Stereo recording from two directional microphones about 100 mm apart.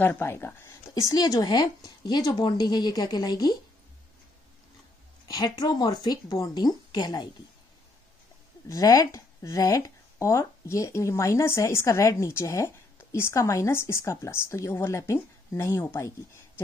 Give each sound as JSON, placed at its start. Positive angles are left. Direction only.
{"t": 0.0, "sound": "a woman's voice", "side_deg": 20}
{"t": 5.3, "sound": "speech", "side_deg": 40}
{"t": 8.6, "sound": "speech", "side_deg": 35}